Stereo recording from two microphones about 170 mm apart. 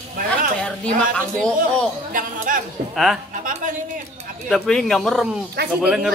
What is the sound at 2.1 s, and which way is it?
Speech, 50° right (ahead or behind).